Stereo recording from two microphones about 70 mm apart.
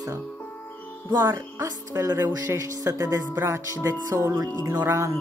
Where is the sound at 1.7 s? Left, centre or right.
Right.